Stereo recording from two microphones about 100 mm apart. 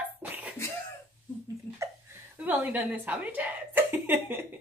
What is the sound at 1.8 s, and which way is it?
A woman's voice, 20° right (ahead or behind).